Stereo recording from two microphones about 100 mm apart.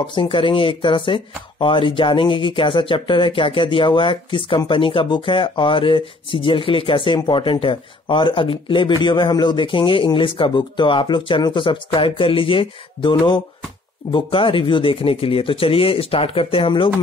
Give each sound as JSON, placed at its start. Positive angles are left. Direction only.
{"t": 0.0, "sound": "speech", "side_deg": 55}